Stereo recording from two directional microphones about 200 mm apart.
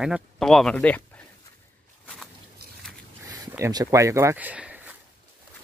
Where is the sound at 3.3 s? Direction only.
15° right (ahead or behind).